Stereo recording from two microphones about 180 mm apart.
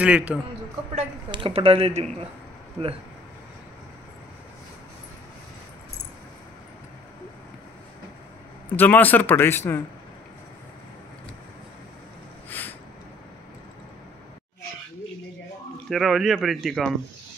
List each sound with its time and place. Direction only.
0.0 s a man's voice: 5° right (ahead or behind)
1.3 s speech: 30° right (ahead or behind)
8.6 s a man's voice: 10° left (ahead or behind)
12.4 s a sound: 10° left (ahead or behind)
15.9 s speech: centre (ahead or behind)